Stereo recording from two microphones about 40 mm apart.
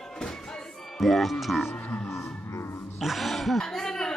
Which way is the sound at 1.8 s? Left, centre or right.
Left.